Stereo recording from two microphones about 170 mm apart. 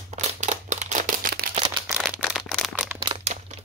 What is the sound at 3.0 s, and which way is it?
Crumpling, 35° right (ahead or behind).